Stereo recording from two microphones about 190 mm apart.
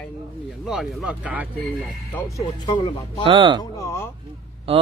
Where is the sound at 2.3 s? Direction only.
25° left (ahead or behind).